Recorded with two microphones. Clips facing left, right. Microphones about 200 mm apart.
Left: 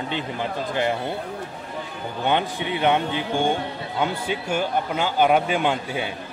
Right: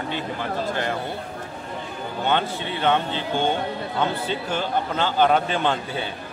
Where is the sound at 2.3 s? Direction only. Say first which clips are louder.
Left 1 dB; 15° left (ahead or behind).